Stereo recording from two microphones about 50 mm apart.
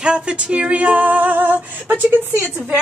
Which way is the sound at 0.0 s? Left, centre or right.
Right.